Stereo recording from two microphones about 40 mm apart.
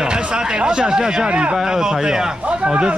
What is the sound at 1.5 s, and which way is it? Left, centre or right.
Speech, centre.